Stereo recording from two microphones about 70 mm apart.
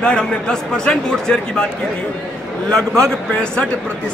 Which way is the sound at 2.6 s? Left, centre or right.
Centre.